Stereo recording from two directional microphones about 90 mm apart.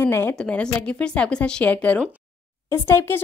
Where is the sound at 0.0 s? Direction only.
25° left (ahead or behind).